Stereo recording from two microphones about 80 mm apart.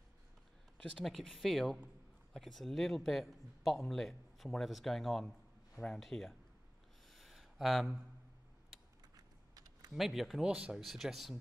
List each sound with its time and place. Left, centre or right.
0.9 s speech: centre
7.1 s a sound: centre
9.1 s computer keyboard: right
9.9 s speech: centre
10.5 s speech: centre
10.8 s speech: centre